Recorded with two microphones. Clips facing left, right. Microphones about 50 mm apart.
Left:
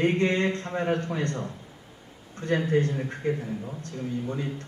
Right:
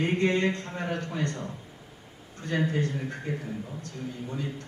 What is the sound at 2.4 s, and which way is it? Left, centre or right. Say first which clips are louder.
Speech: left 4 dB; left.